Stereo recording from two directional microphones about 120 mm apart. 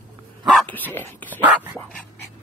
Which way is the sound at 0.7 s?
15° left (ahead or behind).